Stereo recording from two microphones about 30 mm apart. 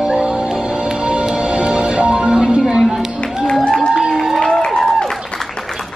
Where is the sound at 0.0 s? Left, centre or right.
Right.